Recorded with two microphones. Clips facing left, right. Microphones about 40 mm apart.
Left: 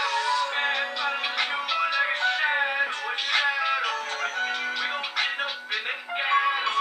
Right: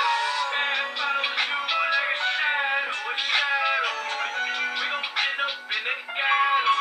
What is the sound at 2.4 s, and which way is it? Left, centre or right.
Music, centre.